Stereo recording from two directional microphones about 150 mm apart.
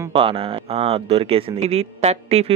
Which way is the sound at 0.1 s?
35° right (ahead or behind).